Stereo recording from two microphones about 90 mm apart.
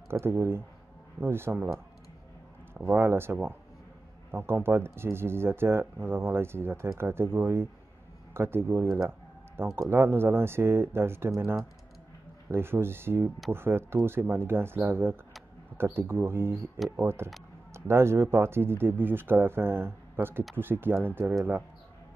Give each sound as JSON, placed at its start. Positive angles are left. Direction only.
{"t": 0.1, "sound": "speech", "side_deg": -25}
{"t": 2.7, "sound": "speech", "side_deg": -25}